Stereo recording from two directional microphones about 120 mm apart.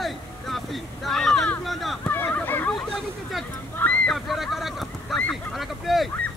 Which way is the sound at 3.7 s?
15° left (ahead or behind).